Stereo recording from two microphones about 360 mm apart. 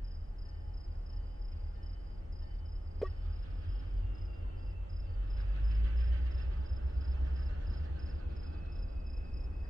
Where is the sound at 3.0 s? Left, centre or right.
Centre.